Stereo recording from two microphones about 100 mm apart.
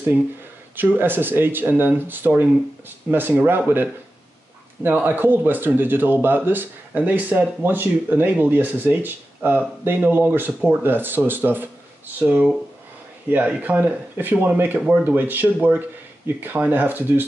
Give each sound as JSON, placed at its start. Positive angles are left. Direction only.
{"t": 0.7, "sound": "speech", "side_deg": -20}